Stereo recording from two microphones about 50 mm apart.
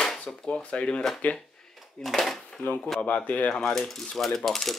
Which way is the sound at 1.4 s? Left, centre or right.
Centre.